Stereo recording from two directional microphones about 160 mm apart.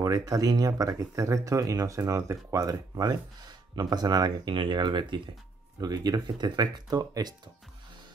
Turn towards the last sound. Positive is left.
turn(degrees=-25)  # may be behind; listen again after turning